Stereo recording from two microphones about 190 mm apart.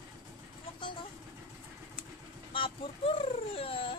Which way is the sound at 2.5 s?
30° left (ahead or behind).